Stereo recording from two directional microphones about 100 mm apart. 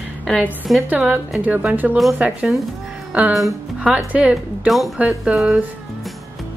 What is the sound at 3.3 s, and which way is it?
Speech, centre (ahead or behind).